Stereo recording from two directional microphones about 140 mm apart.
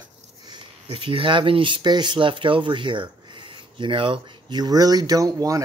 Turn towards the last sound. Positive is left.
turn(degrees=-25)  # may be behind; listen again after turning